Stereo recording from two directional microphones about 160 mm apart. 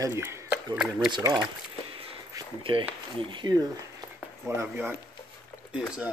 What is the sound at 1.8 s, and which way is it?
Whip, 35° right (ahead or behind).